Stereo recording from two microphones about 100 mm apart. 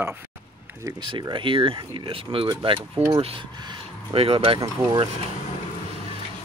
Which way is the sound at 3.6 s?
45° right (ahead or behind).